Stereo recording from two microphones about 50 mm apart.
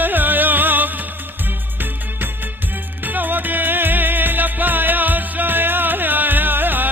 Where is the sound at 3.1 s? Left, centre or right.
Right.